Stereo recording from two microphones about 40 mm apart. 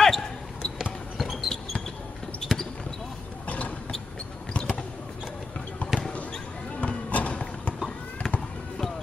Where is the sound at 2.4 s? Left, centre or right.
Centre.